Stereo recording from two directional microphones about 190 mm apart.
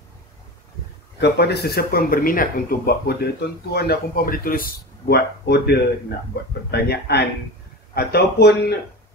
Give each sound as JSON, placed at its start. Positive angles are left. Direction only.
{"t": 1.2, "sound": "speech", "side_deg": 60}